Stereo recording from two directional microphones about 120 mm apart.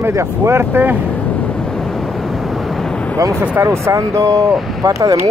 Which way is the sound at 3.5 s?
25° right (ahead or behind).